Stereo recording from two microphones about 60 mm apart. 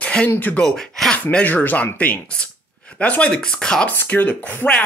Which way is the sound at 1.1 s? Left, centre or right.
Left.